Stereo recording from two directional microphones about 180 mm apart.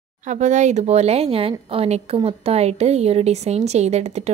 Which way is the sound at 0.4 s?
40° right (ahead or behind).